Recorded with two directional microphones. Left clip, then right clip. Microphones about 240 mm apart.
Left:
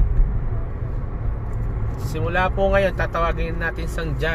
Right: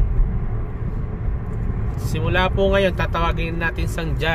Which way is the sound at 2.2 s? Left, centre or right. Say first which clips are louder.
Right 1 dB; centre.